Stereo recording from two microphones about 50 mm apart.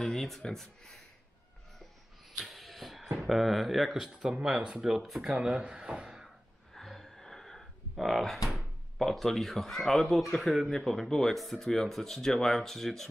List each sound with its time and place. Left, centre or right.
0.0 s speech: centre
2.3 s speech: centre
5.4 s speech: centre
6.7 s gasp: centre
7.9 s speech: centre